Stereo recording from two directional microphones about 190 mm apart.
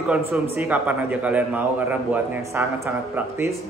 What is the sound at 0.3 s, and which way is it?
A man's voice, 10° right (ahead or behind).